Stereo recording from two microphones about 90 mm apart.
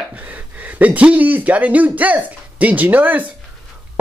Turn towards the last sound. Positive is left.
turn(degrees=-20)  # may be behind; listen again after turning